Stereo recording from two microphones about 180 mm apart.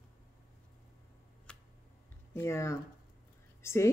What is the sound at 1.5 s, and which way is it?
Tick, 5° left (ahead or behind).